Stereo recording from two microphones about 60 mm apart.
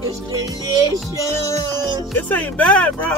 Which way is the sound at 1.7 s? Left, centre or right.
Left.